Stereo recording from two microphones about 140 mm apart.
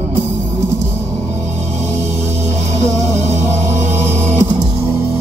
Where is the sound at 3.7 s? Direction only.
55° right (ahead or behind).